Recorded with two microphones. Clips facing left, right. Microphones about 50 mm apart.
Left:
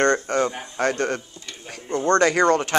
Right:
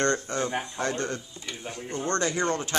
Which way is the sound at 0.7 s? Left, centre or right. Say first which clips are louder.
Left 7 dB; left.